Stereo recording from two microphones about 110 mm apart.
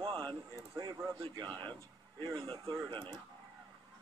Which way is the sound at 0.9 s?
30° right (ahead or behind).